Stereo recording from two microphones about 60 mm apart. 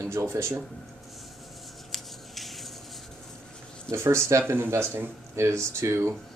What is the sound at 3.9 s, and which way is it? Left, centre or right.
Speech, right.